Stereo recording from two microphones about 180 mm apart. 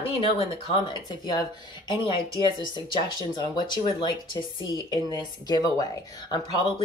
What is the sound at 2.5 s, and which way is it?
Speech, 25° left (ahead or behind).